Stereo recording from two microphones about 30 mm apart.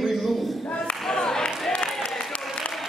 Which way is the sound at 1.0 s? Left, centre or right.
Centre.